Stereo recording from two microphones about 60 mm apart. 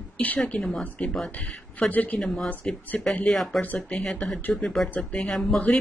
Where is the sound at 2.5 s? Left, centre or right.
Left.